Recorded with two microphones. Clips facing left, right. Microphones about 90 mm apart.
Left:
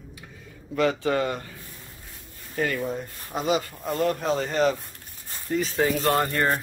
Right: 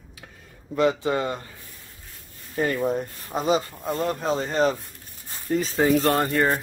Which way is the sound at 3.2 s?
30° right (ahead or behind).